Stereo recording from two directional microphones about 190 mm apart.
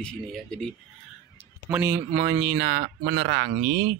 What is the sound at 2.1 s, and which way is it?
Speech, 30° right (ahead or behind).